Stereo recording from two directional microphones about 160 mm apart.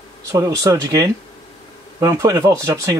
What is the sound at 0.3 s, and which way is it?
Speech, 20° right (ahead or behind).